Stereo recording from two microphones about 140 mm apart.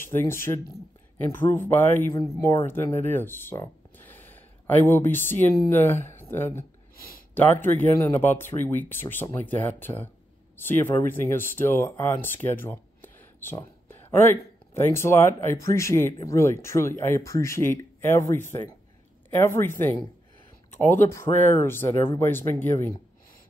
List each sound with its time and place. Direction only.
0.0 s speech: 15° left (ahead or behind)